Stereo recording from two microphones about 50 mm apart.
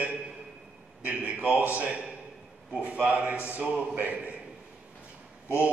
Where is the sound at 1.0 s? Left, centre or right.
Right.